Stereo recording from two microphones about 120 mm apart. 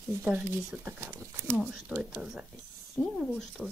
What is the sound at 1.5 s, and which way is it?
Speech, 15° right (ahead or behind).